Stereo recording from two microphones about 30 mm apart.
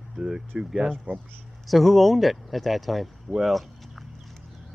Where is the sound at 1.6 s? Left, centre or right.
Centre.